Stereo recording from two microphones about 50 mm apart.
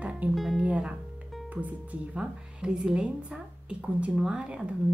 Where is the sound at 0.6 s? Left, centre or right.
Right.